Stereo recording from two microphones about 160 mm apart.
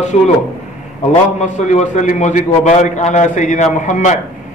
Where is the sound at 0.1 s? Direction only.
45° left (ahead or behind).